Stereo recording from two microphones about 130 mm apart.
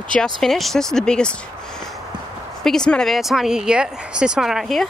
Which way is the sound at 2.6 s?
5° left (ahead or behind).